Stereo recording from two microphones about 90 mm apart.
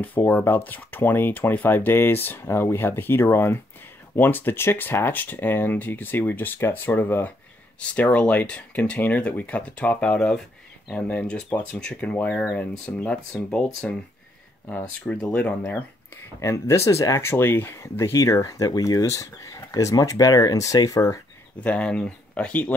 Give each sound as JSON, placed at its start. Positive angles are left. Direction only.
{"t": 0.0, "sound": "speech", "side_deg": 20}
{"t": 15.0, "sound": "speech", "side_deg": 15}
{"t": 16.3, "sound": "speech", "side_deg": 30}
{"t": 21.6, "sound": "speech", "side_deg": 15}